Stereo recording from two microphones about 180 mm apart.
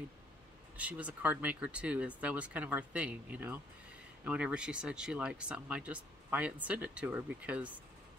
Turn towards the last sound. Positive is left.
turn(degrees=-10)  # may be behind; listen again after turning